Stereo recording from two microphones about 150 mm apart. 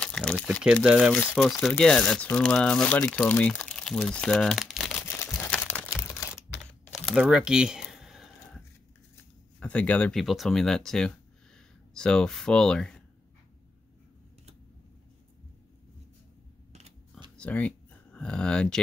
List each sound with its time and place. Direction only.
0.0 s speech: 5° left (ahead or behind)
5.0 s crumpling: 15° left (ahead or behind)
6.6 s typing: 5° left (ahead or behind)
9.1 s speech: 10° left (ahead or behind)
17.4 s a sound: 10° left (ahead or behind)